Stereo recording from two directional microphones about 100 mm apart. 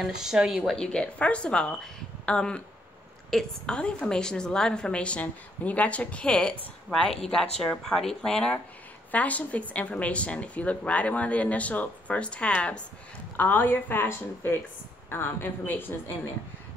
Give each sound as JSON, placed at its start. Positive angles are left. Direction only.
{"t": 0.0, "sound": "speech", "side_deg": -5}
{"t": 0.7, "sound": "a woman's voice", "side_deg": 10}